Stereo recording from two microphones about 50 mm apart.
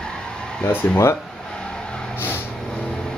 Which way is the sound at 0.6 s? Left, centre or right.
Left.